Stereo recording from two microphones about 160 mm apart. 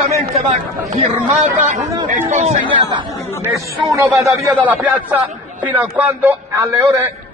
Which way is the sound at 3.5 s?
20° right (ahead or behind).